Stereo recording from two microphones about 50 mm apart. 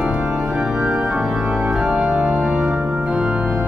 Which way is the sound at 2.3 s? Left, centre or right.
Centre.